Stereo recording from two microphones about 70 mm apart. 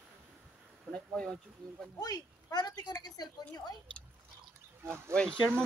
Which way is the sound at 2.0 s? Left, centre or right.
Left.